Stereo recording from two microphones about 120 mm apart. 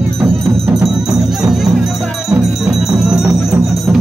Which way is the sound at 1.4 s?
Centre (ahead or behind).